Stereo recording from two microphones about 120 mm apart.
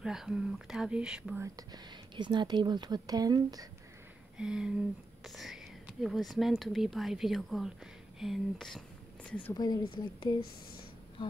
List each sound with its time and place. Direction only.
0.0 s speech: 5° right (ahead or behind)
1.3 s speech: 25° right (ahead or behind)
4.4 s speech: 5° right (ahead or behind); by 9.5 s 10° left (ahead or behind)
9.5 s speech: 35° left (ahead or behind)